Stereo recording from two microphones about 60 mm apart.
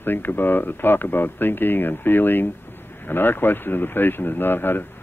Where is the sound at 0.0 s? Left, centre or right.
Left.